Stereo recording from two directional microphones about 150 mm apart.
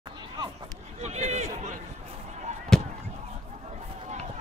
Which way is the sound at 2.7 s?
5° left (ahead or behind).